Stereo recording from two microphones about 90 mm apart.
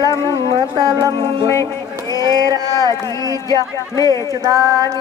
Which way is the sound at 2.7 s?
40° left (ahead or behind).